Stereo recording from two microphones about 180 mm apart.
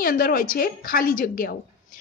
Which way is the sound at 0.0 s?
55° left (ahead or behind).